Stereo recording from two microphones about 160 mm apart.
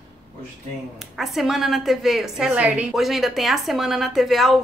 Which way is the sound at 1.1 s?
Centre (ahead or behind).